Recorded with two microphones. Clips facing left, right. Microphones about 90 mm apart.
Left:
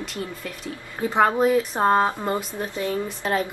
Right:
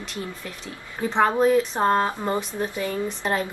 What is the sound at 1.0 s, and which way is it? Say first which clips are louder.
Speech: even; 10° left (ahead or behind).